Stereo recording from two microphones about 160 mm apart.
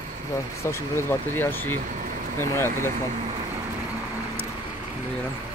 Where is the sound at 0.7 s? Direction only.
15° left (ahead or behind).